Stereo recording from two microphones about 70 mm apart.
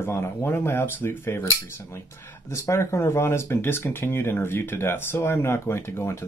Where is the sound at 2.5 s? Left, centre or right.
Left.